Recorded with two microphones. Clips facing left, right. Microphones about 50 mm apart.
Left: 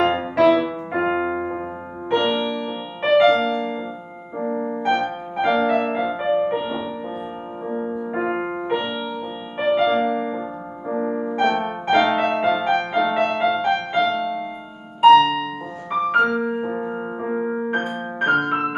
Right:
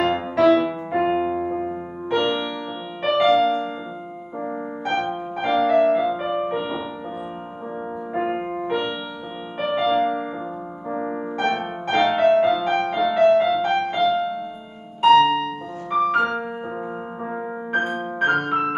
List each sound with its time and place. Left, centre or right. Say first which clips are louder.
0.1 s music: even; centre
0.9 s music: even; centre
2.1 s music: left 2 dB; centre
6.2 s music: left 3 dB; centre
8.2 s music: right 1 dB; left
9.7 s music: left 2 dB; centre
13.1 s music: right 4 dB; centre
13.7 s music: even; centre
16.1 s music: left 3 dB; centre
17.7 s music: right 1 dB; centre